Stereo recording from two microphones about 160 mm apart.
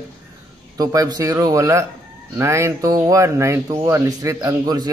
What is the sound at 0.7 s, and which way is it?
Speech, 25° right (ahead or behind).